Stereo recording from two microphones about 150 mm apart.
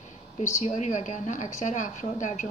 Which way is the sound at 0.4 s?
55° left (ahead or behind).